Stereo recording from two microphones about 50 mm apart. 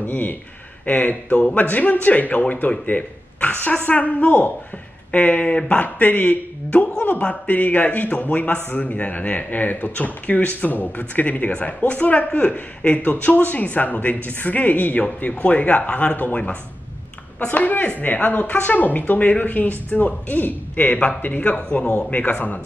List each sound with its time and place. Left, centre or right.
0.0 s speech: left